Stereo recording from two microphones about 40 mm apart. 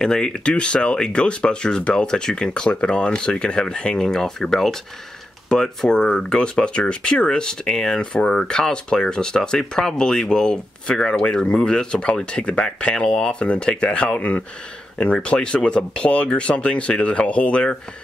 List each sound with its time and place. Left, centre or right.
0.0 s speech: centre
0.5 s speech: left